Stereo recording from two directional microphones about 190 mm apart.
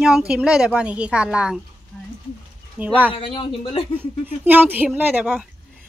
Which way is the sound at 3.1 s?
30° left (ahead or behind).